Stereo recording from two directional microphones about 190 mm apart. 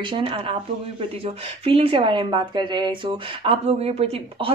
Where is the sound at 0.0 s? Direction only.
25° right (ahead or behind).